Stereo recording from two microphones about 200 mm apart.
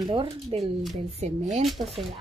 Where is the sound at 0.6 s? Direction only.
Centre (ahead or behind).